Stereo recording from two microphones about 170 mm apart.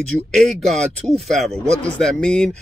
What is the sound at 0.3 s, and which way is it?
Speech, centre (ahead or behind).